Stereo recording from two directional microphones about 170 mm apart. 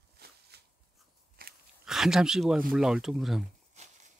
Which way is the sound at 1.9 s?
5° right (ahead or behind).